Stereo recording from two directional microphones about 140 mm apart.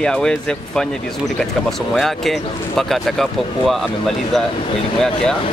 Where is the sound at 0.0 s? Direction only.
5° left (ahead or behind).